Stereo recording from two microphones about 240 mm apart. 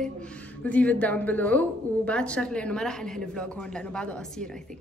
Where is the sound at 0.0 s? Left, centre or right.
Centre.